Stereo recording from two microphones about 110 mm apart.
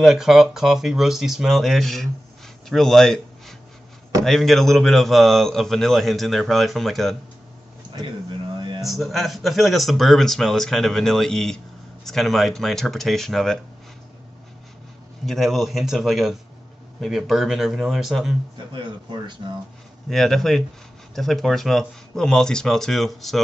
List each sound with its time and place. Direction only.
0.0 s speech: centre (ahead or behind)
7.9 s a sound: 45° right (ahead or behind)
8.8 s speech: centre (ahead or behind)
15.2 s speech: centre (ahead or behind)
18.7 s speech: 45° right (ahead or behind)
20.1 s speech: centre (ahead or behind)